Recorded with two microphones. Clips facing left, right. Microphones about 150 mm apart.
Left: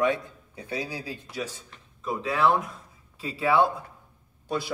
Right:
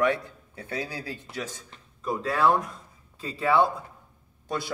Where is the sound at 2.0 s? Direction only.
Centre (ahead or behind).